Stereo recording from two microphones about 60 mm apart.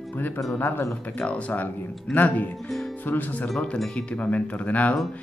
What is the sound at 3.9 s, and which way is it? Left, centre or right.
Speech, left.